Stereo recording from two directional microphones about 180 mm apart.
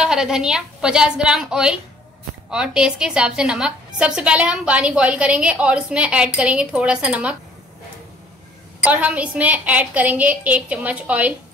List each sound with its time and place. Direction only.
0.0 s a woman's voice: 5° right (ahead or behind)
8.8 s a woman's voice: 10° right (ahead or behind)